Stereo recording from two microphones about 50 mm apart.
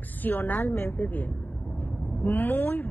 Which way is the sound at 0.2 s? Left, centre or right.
Left.